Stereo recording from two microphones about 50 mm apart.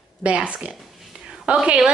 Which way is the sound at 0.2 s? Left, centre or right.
Right.